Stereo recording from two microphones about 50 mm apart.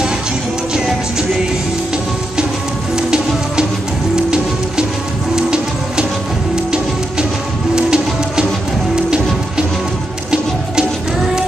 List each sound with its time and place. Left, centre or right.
0.7 s music: centre
3.0 s music: centre
5.3 s music: centre